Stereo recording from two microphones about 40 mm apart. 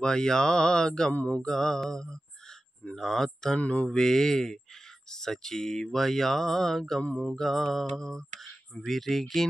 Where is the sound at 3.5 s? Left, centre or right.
Left.